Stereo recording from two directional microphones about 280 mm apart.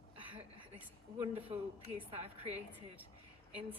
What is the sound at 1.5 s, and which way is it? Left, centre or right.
A woman's voice, right.